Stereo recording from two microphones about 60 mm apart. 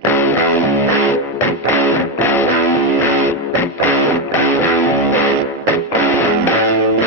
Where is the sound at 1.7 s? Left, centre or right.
Left.